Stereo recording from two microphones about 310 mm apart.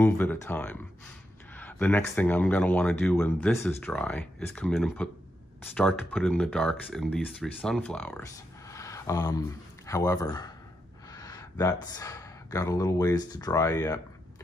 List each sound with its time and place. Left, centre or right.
0.0 s speech: centre